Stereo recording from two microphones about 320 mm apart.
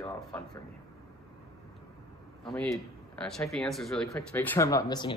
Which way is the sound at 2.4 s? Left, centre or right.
Centre.